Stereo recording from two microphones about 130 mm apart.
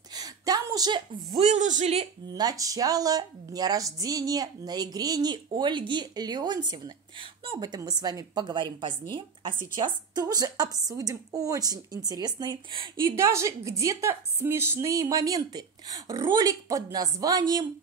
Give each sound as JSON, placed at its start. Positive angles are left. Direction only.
{"t": 0.1, "sound": "a sound", "side_deg": -30}
{"t": 1.3, "sound": "speech", "side_deg": -60}
{"t": 2.3, "sound": "a woman's voice", "side_deg": -30}
{"t": 13.1, "sound": "a woman's voice", "side_deg": -20}